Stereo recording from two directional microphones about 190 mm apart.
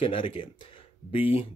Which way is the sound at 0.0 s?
25° left (ahead or behind).